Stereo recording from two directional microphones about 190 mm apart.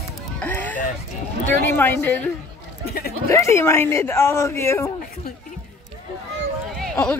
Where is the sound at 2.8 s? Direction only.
55° left (ahead or behind).